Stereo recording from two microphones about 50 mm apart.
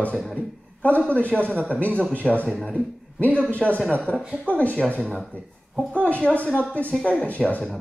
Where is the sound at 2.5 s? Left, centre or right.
Centre.